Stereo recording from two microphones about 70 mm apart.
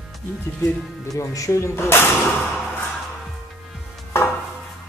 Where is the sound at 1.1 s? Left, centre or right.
Left.